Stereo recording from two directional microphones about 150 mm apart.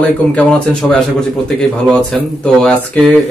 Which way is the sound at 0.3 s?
5° left (ahead or behind).